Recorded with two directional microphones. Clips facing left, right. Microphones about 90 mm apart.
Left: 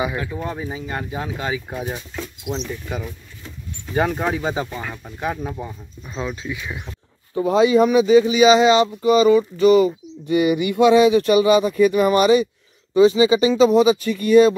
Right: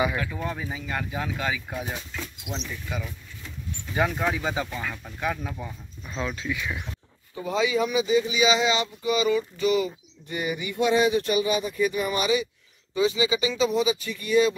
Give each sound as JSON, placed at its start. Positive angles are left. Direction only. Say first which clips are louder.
{"t": 0.0, "sound": "speech", "louder": "left 2 dB", "side_deg": 20}
{"t": 2.4, "sound": "speech", "louder": "left 10 dB", "side_deg": 45}
{"t": 6.0, "sound": "speech", "louder": "left 3 dB", "side_deg": 15}
{"t": 7.3, "sound": "speech", "louder": "left 10 dB", "side_deg": 50}
{"t": 8.0, "sound": "speech", "louder": "left 8 dB", "side_deg": 70}
{"t": 10.2, "sound": "speech", "louder": "left 12 dB", "side_deg": 85}